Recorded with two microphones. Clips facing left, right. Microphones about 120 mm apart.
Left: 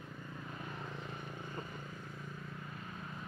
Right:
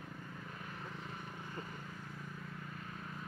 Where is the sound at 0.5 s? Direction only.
25° left (ahead or behind).